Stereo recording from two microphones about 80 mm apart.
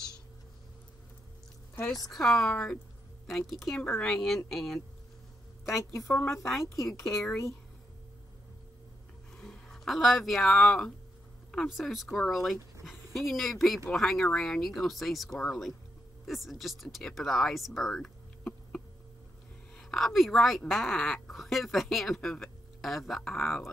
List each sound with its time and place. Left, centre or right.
2.0 s a woman's voice: centre
5.8 s a woman's voice: left
6.7 s a woman's voice: centre
9.4 s a woman's voice: centre
19.8 s a woman's voice: centre